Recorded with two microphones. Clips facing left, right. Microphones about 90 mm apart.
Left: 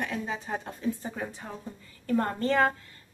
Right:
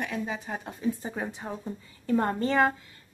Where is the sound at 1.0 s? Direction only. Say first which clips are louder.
Right 2 dB; 25° right (ahead or behind).